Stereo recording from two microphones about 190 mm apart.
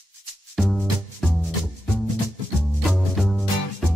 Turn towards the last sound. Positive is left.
turn(degrees=0)  # may be behind; listen again after turning